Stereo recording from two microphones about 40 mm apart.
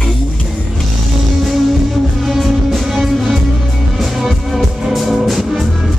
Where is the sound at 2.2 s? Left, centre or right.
Centre.